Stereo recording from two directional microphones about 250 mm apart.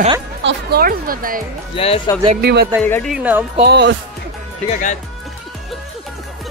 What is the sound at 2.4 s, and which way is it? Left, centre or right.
Speech, right.